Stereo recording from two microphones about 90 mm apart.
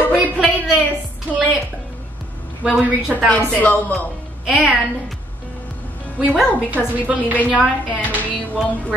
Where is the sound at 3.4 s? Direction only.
15° left (ahead or behind).